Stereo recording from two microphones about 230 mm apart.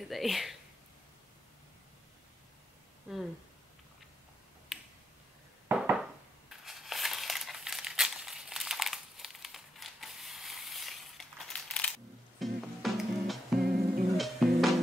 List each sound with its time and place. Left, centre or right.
0.1 s speech: centre
3.1 s speech: centre
4.7 s finger snapping: centre
5.7 s a sound: centre
6.6 s crumpling: centre
12.4 s music: centre
13.6 s music: right
14.1 s music: centre